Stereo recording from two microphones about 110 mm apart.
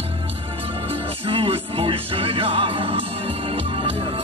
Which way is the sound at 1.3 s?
55° right (ahead or behind).